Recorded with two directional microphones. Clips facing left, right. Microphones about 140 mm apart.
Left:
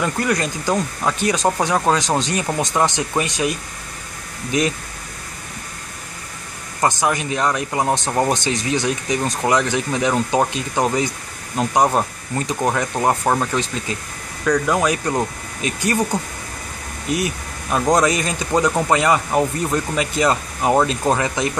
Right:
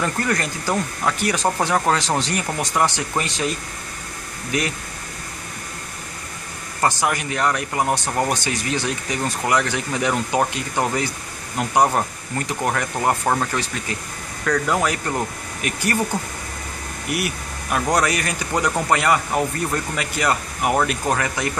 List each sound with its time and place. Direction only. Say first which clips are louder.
0.0 s speech: left 2 dB; 15° left (ahead or behind)
6.8 s speech: left 2 dB; 20° left (ahead or behind)